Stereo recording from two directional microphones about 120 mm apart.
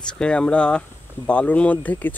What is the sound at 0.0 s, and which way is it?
Speech, 5° left (ahead or behind).